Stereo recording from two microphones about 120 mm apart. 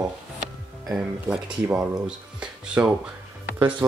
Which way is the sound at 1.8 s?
5° right (ahead or behind).